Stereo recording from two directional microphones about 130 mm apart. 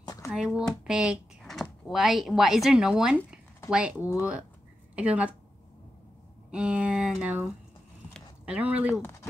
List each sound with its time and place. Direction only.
0.0 s a sound: 25° left (ahead or behind)
0.3 s a woman's voice: 5° right (ahead or behind)
6.5 s speech: 10° right (ahead or behind)
8.9 s speech: 25° left (ahead or behind)